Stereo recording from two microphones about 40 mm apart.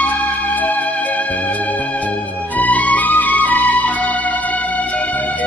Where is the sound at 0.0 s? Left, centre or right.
Left.